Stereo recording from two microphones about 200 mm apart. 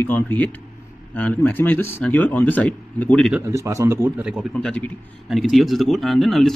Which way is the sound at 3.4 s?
15° right (ahead or behind).